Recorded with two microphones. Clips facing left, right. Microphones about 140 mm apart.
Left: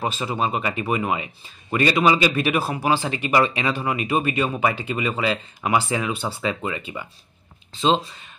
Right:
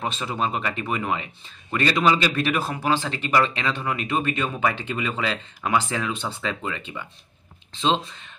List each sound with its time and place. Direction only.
0.0 s speech: 5° left (ahead or behind)